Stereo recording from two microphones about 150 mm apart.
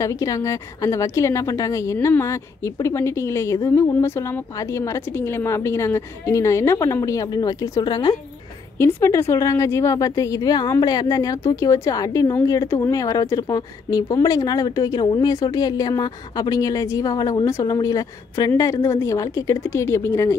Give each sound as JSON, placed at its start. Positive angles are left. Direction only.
{"t": 0.0, "sound": "a woman's voice", "side_deg": 20}